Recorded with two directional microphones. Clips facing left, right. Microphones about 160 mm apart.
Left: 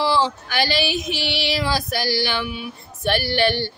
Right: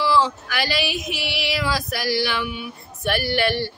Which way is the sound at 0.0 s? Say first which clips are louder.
Even; 30° left (ahead or behind).